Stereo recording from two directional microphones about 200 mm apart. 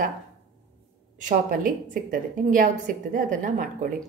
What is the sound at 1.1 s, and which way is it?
A woman's voice, 40° right (ahead or behind).